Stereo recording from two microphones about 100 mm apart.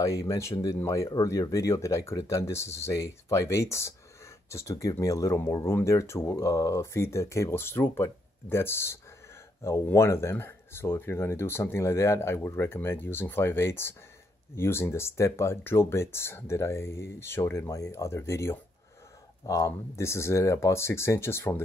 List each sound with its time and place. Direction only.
0.0 s speech: 35° left (ahead or behind)